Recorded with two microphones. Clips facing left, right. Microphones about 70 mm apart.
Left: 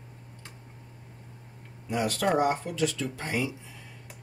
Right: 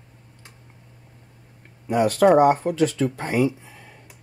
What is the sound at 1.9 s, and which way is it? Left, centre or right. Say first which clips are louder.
Speech: right 10 dB; right.